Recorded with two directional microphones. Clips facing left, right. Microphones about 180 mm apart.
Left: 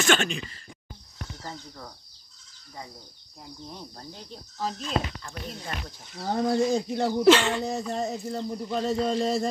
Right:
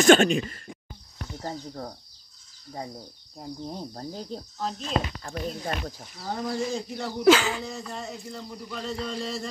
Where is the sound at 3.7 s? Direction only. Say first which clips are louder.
Right 6 dB; 35° right (ahead or behind).